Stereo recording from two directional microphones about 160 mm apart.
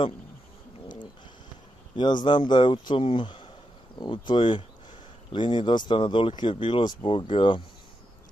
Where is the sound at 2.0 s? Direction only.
30° left (ahead or behind).